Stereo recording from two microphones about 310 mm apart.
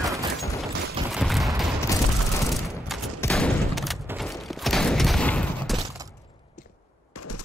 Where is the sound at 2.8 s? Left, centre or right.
Centre.